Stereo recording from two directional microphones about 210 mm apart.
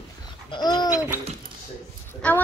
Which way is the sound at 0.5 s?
20° left (ahead or behind).